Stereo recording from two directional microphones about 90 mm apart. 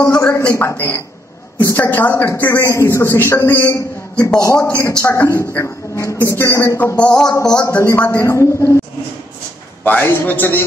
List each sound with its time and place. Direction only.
0.0 s a sound: 35° left (ahead or behind)
0.6 s a man's voice: 25° left (ahead or behind)
4.6 s music: 15° left (ahead or behind)
5.0 s a man's voice: 30° left (ahead or behind)
7.0 s music: 10° left (ahead or behind)
7.6 s a man's voice: 30° left (ahead or behind)
9.8 s a man's voice: 20° left (ahead or behind)